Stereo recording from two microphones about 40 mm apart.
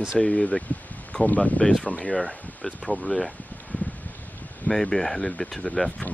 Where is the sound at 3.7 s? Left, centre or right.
Left.